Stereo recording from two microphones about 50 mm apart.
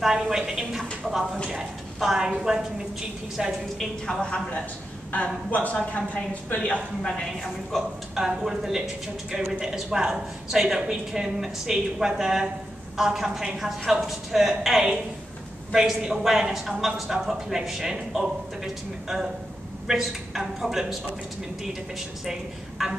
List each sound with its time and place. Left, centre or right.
0.0 s speech: centre
4.0 s a woman's voice: centre
5.1 s a woman's voice: left
7.7 s a woman's voice: centre
8.1 s speech: centre
22.2 s speech: centre